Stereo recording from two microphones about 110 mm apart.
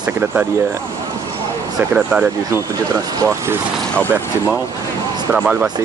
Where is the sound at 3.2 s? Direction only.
25° right (ahead or behind).